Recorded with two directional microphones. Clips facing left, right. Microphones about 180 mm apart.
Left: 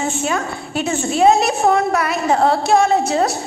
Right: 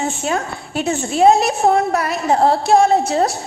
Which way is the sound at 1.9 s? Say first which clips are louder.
Even; 35° right (ahead or behind).